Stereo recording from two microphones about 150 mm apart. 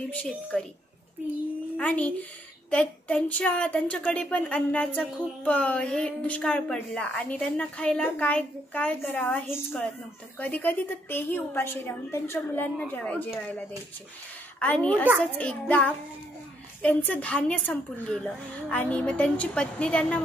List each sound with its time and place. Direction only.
0.1 s a woman's voice: 10° left (ahead or behind)
1.8 s a woman's voice: 10° left (ahead or behind)
9.5 s a woman's voice: 5° right (ahead or behind)
10.4 s a woman's voice: 10° left (ahead or behind)
16.8 s a woman's voice: 10° left (ahead or behind)